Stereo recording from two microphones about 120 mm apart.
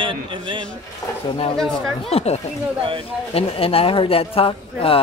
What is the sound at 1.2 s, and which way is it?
A man's voice, 50° left (ahead or behind).